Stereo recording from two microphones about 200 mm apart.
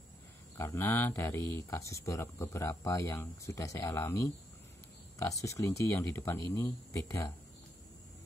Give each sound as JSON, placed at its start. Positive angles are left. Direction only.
{"t": 0.6, "sound": "speech", "side_deg": 10}